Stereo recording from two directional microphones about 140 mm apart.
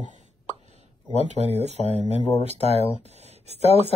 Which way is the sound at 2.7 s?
45° left (ahead or behind).